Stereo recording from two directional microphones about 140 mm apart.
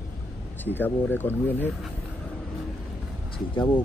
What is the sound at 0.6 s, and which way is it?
Speech, 15° left (ahead or behind).